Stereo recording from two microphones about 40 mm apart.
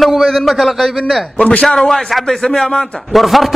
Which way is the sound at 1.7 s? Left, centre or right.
Centre.